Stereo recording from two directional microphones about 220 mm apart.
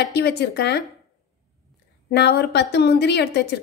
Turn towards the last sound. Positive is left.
turn(degrees=50)  # may be behind; listen again after turning